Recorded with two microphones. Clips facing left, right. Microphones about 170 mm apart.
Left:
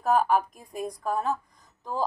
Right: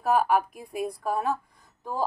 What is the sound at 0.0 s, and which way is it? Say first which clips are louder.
A woman's voice: even; 10° right (ahead or behind).